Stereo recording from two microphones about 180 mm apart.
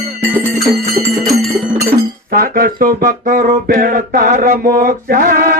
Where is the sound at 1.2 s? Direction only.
Centre (ahead or behind).